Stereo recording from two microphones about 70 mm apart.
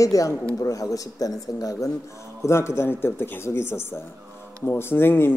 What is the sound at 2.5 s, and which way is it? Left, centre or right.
Speech, left.